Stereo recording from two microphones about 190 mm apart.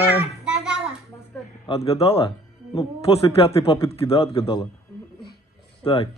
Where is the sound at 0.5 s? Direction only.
Centre (ahead or behind).